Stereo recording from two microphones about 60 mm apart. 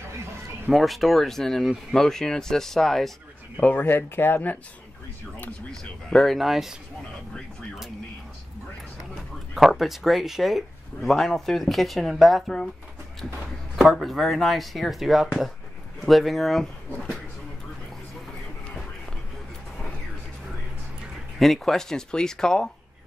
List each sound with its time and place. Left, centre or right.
0.7 s speech: centre
3.8 s speech: left
5.7 s speech: centre
9.1 s speech: centre
13.7 s speech: centre
21.4 s speech: centre